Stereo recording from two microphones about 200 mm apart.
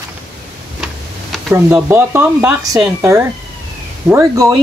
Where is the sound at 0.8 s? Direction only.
Centre (ahead or behind).